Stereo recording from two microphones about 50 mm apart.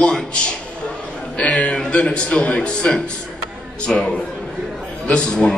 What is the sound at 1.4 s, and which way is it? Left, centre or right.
A man's voice, left.